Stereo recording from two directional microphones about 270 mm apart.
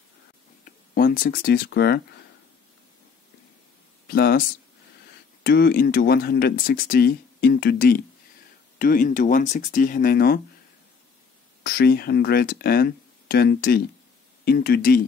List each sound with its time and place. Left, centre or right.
0.7 s speech: left
4.1 s speech: left
5.4 s speech: left
11.6 s speech: left